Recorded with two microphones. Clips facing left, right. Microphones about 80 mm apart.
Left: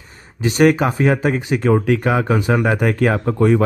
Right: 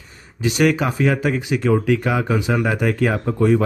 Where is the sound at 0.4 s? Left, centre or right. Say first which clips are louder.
Left 4 dB; left.